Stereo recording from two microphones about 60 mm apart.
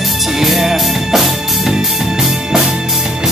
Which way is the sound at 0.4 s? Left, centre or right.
Centre.